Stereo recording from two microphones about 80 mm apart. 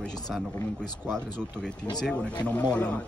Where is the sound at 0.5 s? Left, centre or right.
Left.